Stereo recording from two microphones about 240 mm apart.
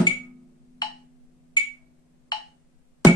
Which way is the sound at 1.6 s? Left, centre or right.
Centre.